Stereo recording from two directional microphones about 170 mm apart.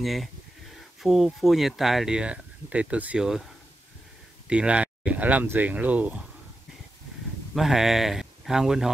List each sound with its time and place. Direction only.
0.0 s speech: centre (ahead or behind)
4.5 s speech: 5° right (ahead or behind)
7.5 s speech: centre (ahead or behind)